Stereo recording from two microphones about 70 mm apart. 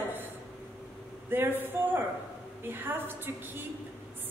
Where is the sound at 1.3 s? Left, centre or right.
Right.